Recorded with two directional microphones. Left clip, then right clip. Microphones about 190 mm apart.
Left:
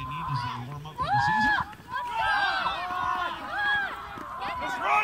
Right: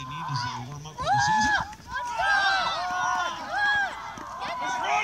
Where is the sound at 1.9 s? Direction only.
50° right (ahead or behind).